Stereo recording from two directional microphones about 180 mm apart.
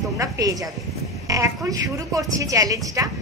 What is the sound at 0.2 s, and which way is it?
Speech, 20° right (ahead or behind).